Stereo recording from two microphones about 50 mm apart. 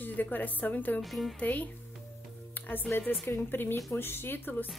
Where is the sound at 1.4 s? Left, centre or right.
Left.